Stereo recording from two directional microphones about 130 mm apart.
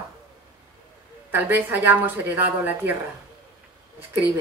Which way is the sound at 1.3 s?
15° right (ahead or behind).